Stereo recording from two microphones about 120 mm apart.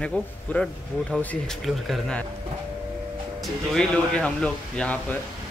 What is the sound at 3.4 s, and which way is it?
Speech, 5° left (ahead or behind).